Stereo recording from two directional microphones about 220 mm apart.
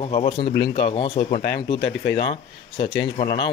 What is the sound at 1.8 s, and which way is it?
Speech, 50° left (ahead or behind).